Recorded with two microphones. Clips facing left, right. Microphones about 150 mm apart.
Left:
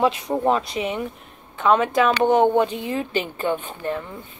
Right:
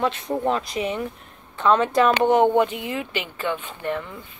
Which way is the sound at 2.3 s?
25° left (ahead or behind).